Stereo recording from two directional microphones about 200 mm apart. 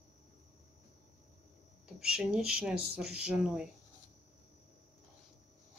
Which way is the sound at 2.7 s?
50° right (ahead or behind).